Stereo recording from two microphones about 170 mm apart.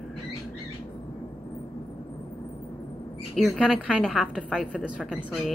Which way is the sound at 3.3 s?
Centre (ahead or behind).